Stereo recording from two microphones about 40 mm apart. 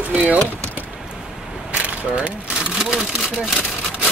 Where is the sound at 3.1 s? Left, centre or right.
Centre.